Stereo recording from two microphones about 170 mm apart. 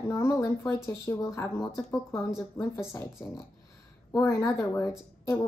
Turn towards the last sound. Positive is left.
turn(degrees=15)  # may be behind; listen again after turning